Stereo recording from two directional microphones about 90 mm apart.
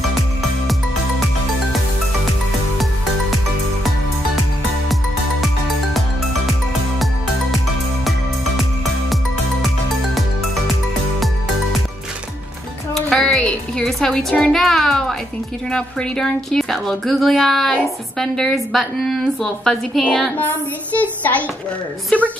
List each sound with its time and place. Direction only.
12.9 s music: 5° left (ahead or behind)
14.3 s a woman's voice: 10° left (ahead or behind)
20.3 s a woman's voice: 20° left (ahead or behind)